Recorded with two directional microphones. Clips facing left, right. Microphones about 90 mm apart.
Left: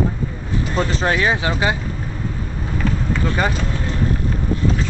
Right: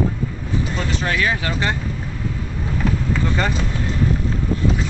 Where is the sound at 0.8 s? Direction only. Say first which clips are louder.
Left 6 dB; 35° left (ahead or behind); by 1.8 s 15° left (ahead or behind).